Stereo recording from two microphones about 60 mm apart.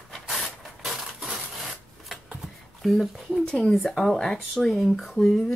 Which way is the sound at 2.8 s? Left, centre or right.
Centre.